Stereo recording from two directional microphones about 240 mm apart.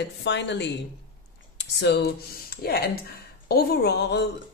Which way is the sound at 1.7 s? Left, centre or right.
Left.